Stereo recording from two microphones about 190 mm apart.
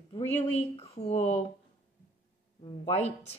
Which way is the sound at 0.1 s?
35° left (ahead or behind).